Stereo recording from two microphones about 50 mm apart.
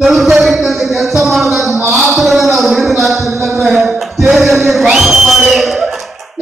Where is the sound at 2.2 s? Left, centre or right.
Centre.